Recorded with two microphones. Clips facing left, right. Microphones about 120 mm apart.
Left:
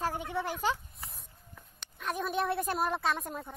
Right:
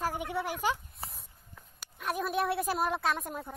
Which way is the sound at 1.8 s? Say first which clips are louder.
Right 1 dB; 5° right (ahead or behind).